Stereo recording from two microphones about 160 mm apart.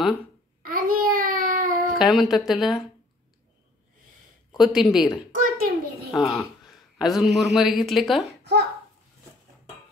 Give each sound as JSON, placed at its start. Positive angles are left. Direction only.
{"t": 0.6, "sound": "babbling", "side_deg": -65}
{"t": 2.0, "sound": "a woman's voice", "side_deg": 0}
{"t": 4.6, "sound": "a woman's voice", "side_deg": -5}
{"t": 5.3, "sound": "a sound", "side_deg": -60}
{"t": 6.1, "sound": "speech", "side_deg": 0}